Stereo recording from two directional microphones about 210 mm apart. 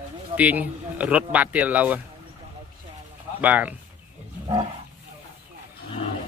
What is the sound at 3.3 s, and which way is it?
Speech, 5° right (ahead or behind).